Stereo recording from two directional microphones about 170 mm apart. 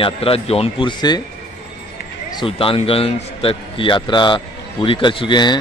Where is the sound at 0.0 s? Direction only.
35° left (ahead or behind).